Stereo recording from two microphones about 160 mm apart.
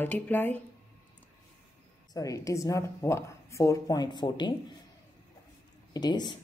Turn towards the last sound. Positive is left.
turn(degrees=25)  # may be behind; listen again after turning